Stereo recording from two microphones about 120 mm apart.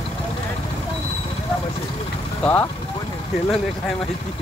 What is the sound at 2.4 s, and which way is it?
Vehicle, 15° left (ahead or behind).